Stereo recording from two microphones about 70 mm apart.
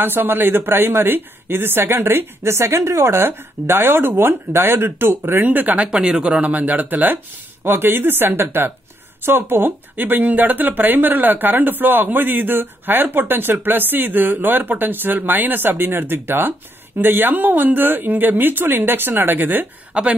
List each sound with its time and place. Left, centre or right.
0.0 s speech: right
5.9 s speech: centre